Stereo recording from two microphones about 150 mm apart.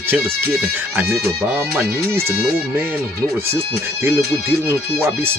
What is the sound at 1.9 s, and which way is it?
Speech, 90° right.